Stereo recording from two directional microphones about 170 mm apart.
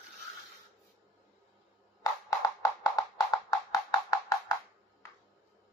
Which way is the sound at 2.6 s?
20° left (ahead or behind).